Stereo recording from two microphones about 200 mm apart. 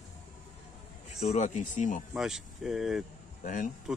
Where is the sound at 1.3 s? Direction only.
40° left (ahead or behind).